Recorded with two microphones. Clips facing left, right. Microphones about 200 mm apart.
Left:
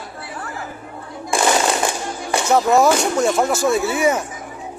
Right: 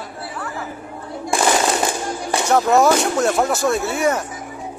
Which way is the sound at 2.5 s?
Centre (ahead or behind).